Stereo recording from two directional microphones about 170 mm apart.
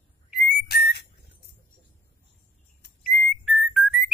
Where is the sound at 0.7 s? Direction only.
70° left (ahead or behind).